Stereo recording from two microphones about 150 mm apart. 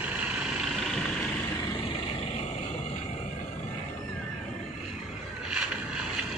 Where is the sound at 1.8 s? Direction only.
35° left (ahead or behind).